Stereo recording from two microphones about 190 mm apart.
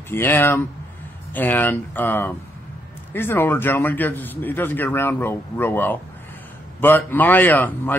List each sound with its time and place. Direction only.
0.1 s a man's voice: 10° left (ahead or behind)